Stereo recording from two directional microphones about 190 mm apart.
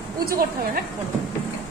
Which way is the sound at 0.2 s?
55° right (ahead or behind).